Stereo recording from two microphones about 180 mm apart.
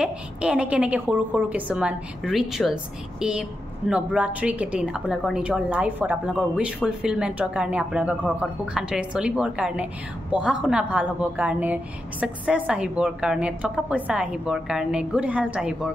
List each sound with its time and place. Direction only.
0.0 s a woman's voice: 5° right (ahead or behind)